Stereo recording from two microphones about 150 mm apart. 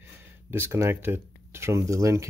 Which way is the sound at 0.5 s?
15° right (ahead or behind).